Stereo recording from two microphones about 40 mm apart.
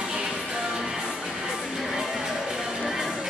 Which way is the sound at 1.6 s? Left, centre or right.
Centre.